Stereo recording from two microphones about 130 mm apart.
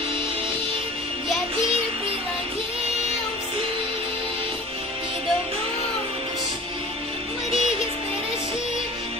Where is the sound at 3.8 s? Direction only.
45° right (ahead or behind).